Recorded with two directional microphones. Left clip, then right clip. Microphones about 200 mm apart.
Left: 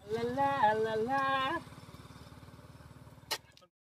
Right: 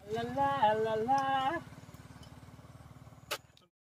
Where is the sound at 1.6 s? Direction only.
50° left (ahead or behind).